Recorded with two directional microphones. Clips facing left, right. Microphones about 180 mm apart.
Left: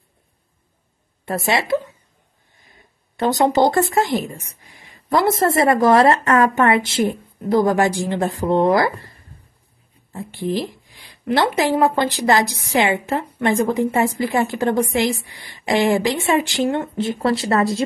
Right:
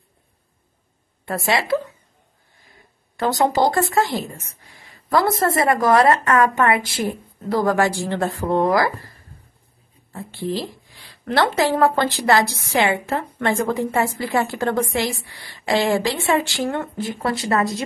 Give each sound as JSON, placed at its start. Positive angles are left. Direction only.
{"t": 1.2, "sound": "speech", "side_deg": 20}
{"t": 3.2, "sound": "speech", "side_deg": 20}
{"t": 10.1, "sound": "speech", "side_deg": 15}